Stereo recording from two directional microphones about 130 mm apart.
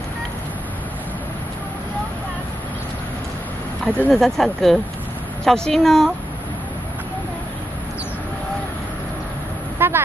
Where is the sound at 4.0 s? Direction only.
5° left (ahead or behind).